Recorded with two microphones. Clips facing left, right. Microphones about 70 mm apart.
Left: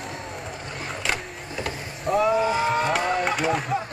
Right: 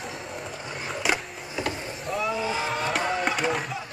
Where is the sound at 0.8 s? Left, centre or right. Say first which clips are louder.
Right 2 dB; centre.